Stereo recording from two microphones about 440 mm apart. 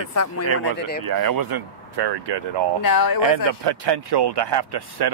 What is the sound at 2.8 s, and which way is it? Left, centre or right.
Speech, left.